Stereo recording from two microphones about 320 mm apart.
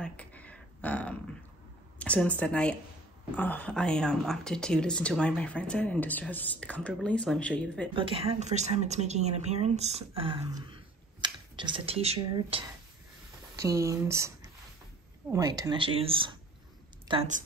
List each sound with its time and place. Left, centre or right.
0.0 s a sound: centre
2.0 s a woman's voice: centre
7.9 s a woman's voice: centre